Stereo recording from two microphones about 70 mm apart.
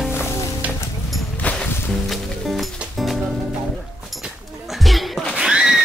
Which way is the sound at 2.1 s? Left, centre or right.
Centre.